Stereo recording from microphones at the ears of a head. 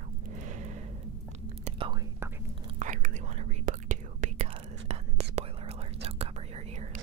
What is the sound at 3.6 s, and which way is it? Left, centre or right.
Whispering, right.